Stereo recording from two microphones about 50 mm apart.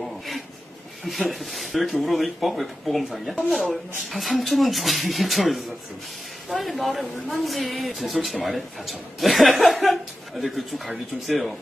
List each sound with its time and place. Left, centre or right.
1.3 s speech: centre